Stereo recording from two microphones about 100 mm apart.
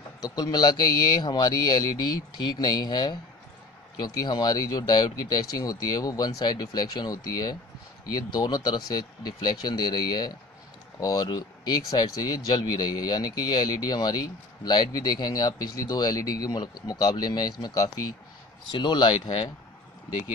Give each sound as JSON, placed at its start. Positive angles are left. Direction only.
{"t": 0.2, "sound": "speech", "side_deg": 45}
{"t": 18.7, "sound": "speech", "side_deg": 50}